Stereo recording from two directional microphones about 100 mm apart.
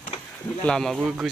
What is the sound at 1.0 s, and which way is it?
Speech, 10° right (ahead or behind).